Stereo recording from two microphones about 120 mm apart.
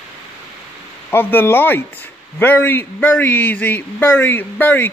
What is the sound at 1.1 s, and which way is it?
Speech, 15° left (ahead or behind).